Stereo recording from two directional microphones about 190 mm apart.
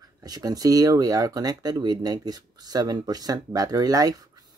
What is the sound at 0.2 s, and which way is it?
Speech, 20° right (ahead or behind).